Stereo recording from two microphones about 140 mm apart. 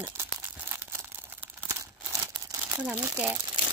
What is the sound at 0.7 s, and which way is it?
Tearing, 15° right (ahead or behind).